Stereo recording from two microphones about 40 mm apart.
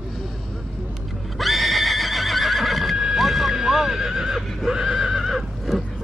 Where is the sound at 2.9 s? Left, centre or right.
Centre.